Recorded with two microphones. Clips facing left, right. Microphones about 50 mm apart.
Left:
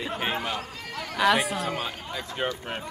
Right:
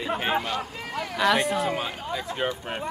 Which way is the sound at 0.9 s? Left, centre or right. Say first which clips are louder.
Right 4 dB; centre.